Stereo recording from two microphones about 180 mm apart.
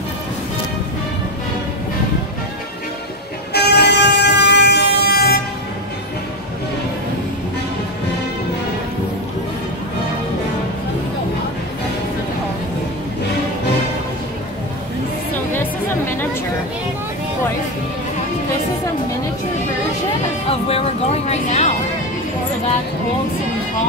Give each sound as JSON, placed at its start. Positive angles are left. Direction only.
{"t": 3.5, "sound": "vehicle", "side_deg": 65}
{"t": 15.5, "sound": "music", "side_deg": 10}
{"t": 20.4, "sound": "music", "side_deg": 35}